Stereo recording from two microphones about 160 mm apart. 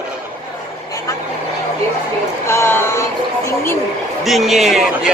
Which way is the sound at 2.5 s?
15° left (ahead or behind).